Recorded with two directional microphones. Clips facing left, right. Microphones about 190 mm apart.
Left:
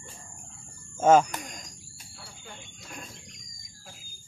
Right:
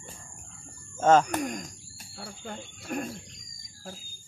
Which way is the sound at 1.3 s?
55° right (ahead or behind).